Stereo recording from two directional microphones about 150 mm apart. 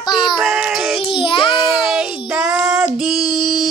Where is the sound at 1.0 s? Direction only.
35° left (ahead or behind).